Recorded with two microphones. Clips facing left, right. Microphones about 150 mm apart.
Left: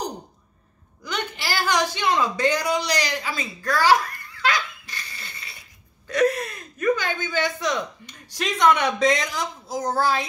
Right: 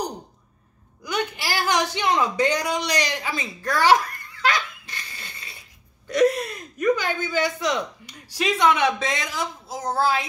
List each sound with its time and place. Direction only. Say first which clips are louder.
1.0 s speech: right 2 dB; 10° right (ahead or behind)
4.5 s a sound: even; 25° right (ahead or behind)
6.0 s speech: right 2 dB; 15° right (ahead or behind)